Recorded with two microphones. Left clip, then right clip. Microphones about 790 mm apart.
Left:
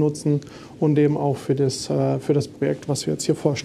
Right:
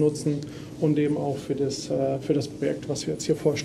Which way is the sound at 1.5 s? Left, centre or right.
Left.